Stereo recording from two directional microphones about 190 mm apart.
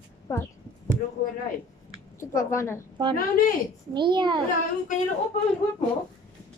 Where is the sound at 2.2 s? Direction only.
15° left (ahead or behind).